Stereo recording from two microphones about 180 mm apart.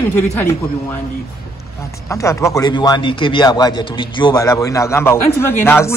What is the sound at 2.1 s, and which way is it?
A man's voice, 15° left (ahead or behind).